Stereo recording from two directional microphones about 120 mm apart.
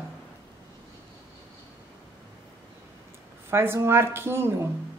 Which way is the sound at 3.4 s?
20° right (ahead or behind).